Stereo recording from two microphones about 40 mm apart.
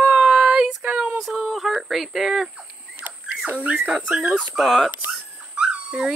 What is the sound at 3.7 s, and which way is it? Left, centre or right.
Speech, right.